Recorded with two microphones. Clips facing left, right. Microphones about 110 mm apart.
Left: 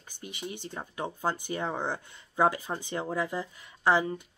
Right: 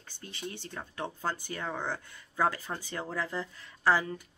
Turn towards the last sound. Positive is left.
turn(degrees=20)  # may be behind; listen again after turning